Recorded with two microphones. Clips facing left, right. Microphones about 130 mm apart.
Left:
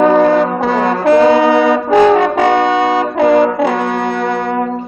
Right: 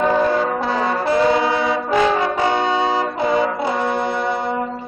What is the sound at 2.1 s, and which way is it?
Brass instrument, 65° left (ahead or behind).